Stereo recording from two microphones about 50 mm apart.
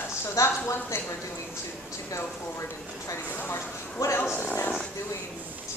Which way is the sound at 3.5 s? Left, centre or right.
Left.